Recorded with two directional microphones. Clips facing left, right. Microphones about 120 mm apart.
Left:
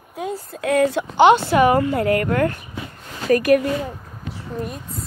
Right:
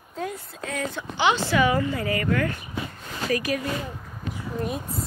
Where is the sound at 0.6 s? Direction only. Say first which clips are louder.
Left 13 dB; 60° left (ahead or behind).